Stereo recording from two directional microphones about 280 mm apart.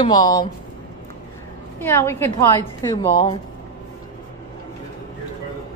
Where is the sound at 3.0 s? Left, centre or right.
Left.